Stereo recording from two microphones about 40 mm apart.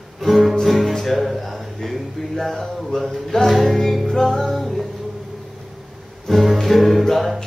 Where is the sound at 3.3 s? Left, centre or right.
Centre.